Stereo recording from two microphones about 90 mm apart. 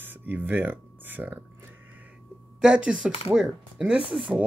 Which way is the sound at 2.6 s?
10° right (ahead or behind).